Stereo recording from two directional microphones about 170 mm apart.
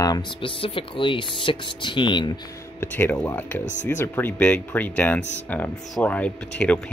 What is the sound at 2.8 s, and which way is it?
Speech, 10° left (ahead or behind).